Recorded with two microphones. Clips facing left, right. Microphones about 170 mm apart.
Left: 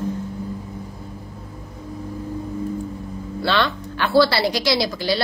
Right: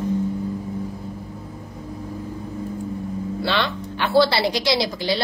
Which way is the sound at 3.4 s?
15° right (ahead or behind).